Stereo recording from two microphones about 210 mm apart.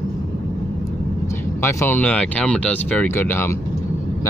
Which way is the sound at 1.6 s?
10° left (ahead or behind).